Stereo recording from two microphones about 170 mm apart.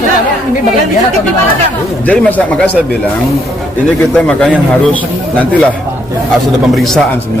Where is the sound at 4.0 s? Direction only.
5° left (ahead or behind).